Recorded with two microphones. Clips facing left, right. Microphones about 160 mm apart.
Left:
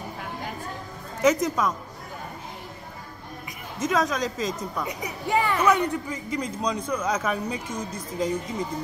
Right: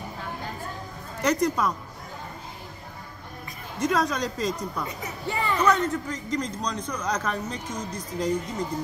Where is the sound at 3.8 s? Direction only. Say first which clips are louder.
Even; centre (ahead or behind).